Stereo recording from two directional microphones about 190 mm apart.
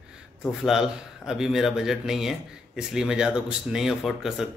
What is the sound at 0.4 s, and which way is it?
A man's voice, centre (ahead or behind).